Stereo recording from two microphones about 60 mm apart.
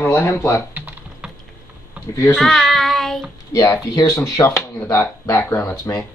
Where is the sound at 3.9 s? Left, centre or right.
Left.